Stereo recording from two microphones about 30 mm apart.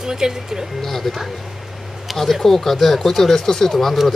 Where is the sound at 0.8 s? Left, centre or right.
Centre.